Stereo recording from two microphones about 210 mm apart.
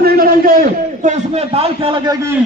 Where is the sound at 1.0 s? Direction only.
30° right (ahead or behind); by 2.4 s 15° right (ahead or behind).